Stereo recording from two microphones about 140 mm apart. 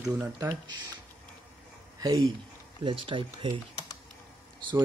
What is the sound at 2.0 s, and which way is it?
Speech, 25° right (ahead or behind).